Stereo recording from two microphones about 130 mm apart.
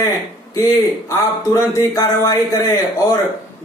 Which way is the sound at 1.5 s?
25° left (ahead or behind).